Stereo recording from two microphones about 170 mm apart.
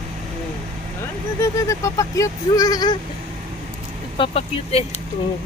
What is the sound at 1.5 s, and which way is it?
Speech, 20° left (ahead or behind).